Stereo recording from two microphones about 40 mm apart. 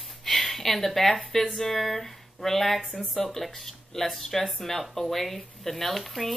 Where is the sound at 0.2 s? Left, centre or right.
Centre.